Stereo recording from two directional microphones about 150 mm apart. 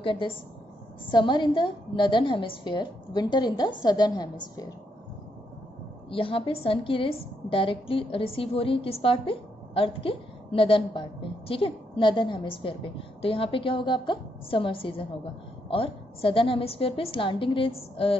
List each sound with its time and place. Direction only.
0.0 s a woman's voice: 35° left (ahead or behind)
6.0 s a woman's voice: 35° left (ahead or behind)